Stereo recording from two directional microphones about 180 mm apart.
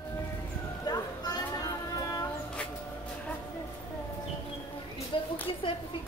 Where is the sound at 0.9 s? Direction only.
20° left (ahead or behind).